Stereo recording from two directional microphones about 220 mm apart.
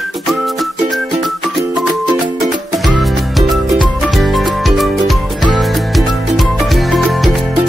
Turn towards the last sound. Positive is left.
turn(degrees=0)  # may be behind; listen again after turning